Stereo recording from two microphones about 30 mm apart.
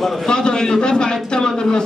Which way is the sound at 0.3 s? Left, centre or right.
Left.